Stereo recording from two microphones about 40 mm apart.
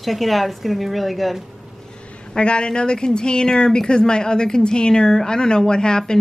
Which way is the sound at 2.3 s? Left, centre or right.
Left.